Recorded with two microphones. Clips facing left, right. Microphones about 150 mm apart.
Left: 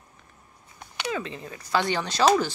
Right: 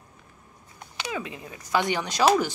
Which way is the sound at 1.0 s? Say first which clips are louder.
Left 2 dB; 10° right (ahead or behind).